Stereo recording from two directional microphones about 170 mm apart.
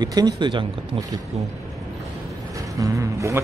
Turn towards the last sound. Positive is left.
turn(degrees=-20)  # may be behind; listen again after turning